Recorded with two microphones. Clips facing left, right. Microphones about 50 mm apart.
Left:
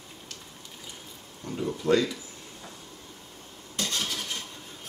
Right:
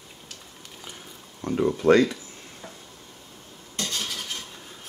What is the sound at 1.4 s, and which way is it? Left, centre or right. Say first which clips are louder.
Speech: right 8 dB; right.